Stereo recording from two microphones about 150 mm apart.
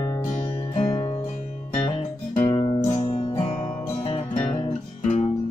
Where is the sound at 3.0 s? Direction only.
45° left (ahead or behind).